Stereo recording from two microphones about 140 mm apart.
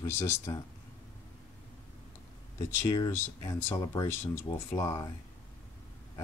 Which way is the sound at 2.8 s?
30° left (ahead or behind).